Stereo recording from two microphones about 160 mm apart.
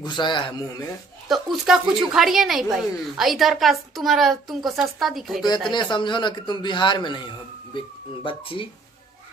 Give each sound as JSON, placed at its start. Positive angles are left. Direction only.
{"t": 0.0, "sound": "a man's voice", "side_deg": 30}
{"t": 1.3, "sound": "speech", "side_deg": 0}
{"t": 5.7, "sound": "a man's voice", "side_deg": 30}